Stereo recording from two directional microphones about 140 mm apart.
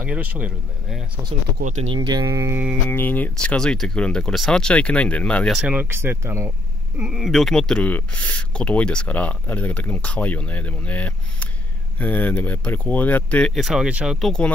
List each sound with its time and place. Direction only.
0.0 s speech: 10° right (ahead or behind)
1.6 s speech: 65° right (ahead or behind)
2.0 s speech: 30° right (ahead or behind)
2.9 s speech: 15° left (ahead or behind)
5.6 s speech: 10° right (ahead or behind)
7.0 s speech: 5° right (ahead or behind)
13.6 s speech: 5° right (ahead or behind)